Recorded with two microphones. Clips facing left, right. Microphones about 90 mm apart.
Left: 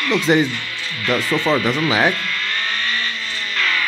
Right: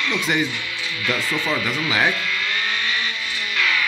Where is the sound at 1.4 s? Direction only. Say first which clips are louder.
Left 6 dB; 30° left (ahead or behind).